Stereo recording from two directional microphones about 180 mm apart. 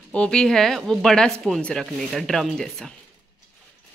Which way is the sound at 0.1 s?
5° left (ahead or behind).